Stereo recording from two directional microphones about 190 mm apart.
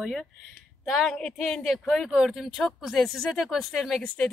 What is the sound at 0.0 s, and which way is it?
Speech, centre (ahead or behind).